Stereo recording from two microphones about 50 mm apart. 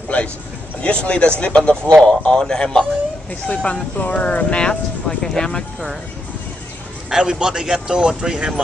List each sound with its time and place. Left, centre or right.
0.1 s a sound: left
0.8 s a man's voice: left
3.3 s speech: left
4.6 s speech: centre
7.1 s speech: centre